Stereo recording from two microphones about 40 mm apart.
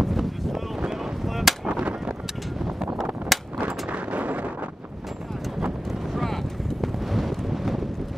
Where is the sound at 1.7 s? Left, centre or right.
Right.